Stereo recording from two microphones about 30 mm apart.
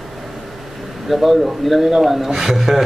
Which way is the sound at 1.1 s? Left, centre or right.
Centre.